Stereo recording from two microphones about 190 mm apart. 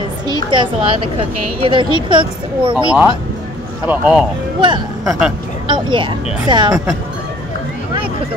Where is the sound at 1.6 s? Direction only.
25° right (ahead or behind).